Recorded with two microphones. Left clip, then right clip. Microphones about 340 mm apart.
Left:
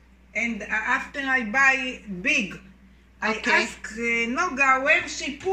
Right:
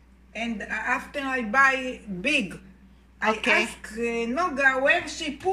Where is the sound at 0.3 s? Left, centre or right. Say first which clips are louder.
Left 5 dB; right.